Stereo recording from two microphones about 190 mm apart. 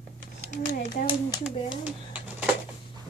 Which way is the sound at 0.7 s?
60° left (ahead or behind).